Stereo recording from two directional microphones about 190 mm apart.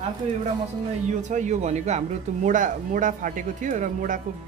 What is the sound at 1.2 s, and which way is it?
Speech, 40° right (ahead or behind).